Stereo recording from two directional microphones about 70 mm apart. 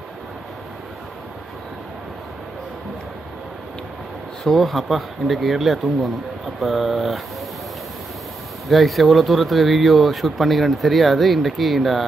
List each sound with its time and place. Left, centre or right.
4.5 s speech: centre
8.6 s speech: centre